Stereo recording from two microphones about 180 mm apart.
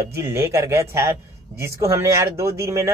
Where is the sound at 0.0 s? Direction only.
15° right (ahead or behind).